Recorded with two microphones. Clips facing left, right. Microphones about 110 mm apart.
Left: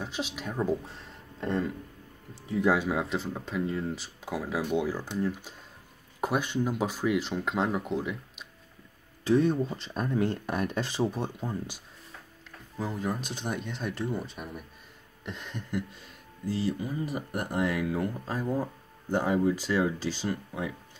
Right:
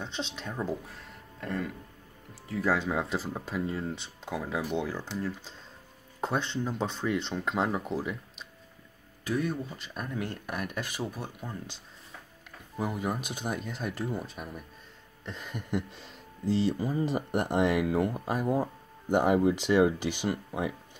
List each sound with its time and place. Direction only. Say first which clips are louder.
0.0 s speech: left 2 dB; 5° left (ahead or behind)
0.8 s music: left 1 dB; 30° left (ahead or behind)
2.4 s speech: left 4 dB; 25° left (ahead or behind)
2.7 s speech: right 1 dB; 5° left (ahead or behind)
9.2 s speech: left 7 dB; 25° left (ahead or behind)
12.7 s speech: even; 10° right (ahead or behind)
16.0 s speech: right 1 dB; 25° right (ahead or behind)